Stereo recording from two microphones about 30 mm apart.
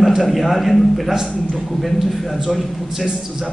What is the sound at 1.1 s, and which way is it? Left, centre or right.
Speech, centre.